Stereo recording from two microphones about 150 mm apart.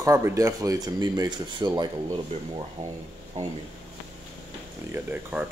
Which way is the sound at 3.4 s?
45° right (ahead or behind).